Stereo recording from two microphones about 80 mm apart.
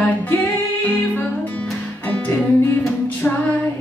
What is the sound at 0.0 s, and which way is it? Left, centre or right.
Music, left.